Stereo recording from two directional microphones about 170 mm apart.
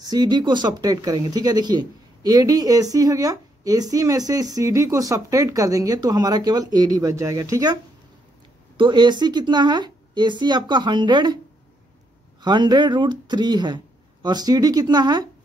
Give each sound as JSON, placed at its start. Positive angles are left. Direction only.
{"t": 0.0, "sound": "speech", "side_deg": -25}
{"t": 12.4, "sound": "speech", "side_deg": -25}